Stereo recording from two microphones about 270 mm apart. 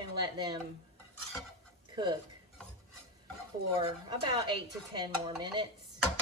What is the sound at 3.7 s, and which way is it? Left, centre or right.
Speech, centre.